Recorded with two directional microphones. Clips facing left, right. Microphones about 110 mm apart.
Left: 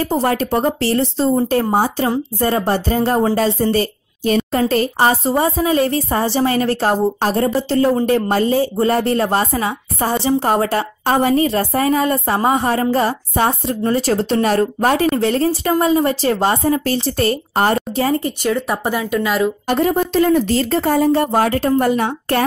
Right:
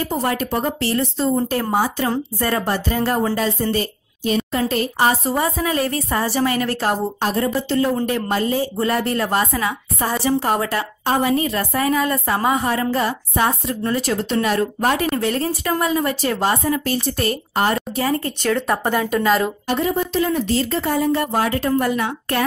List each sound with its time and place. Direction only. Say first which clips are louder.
0.1 s a woman's voice: left 5 dB; 35° left (ahead or behind)
18.2 s speech: left 2 dB; 10° left (ahead or behind)
19.8 s speech: left 5 dB; 50° left (ahead or behind); by 22.4 s 35° left (ahead or behind)